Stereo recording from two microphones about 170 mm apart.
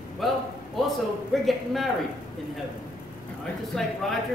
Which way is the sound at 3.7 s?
Centre (ahead or behind).